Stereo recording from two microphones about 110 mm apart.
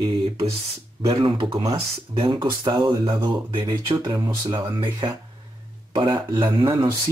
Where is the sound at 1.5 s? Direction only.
55° right (ahead or behind).